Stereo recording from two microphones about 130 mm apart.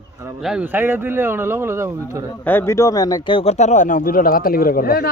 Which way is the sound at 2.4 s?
15° left (ahead or behind).